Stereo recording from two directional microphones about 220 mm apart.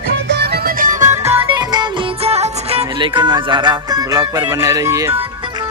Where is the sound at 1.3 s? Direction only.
15° right (ahead or behind).